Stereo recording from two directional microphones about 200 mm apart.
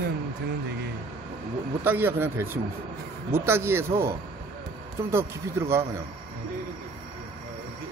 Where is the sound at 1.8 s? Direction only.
10° right (ahead or behind).